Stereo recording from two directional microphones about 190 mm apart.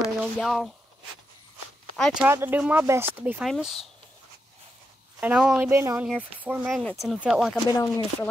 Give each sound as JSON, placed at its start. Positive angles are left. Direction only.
{"t": 0.0, "sound": "speech", "side_deg": 0}
{"t": 2.2, "sound": "speech", "side_deg": -10}
{"t": 3.4, "sound": "speech", "side_deg": 0}
{"t": 5.2, "sound": "speech", "side_deg": -5}
{"t": 6.8, "sound": "speech", "side_deg": 5}
{"t": 7.6, "sound": "speech", "side_deg": 20}